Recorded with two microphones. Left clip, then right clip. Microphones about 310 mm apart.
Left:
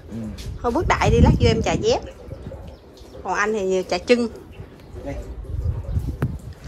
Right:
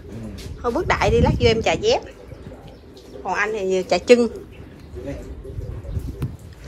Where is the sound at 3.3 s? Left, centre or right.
Centre.